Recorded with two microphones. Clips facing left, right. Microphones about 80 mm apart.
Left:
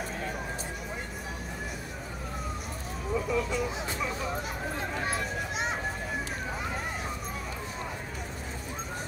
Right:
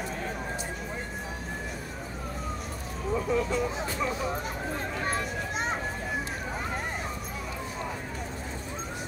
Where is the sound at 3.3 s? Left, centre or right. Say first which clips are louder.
Right 3 dB; right.